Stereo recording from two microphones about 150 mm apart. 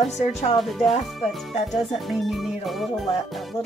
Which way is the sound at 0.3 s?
45° left (ahead or behind).